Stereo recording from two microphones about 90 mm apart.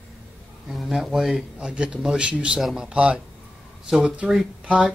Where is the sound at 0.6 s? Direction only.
Centre (ahead or behind).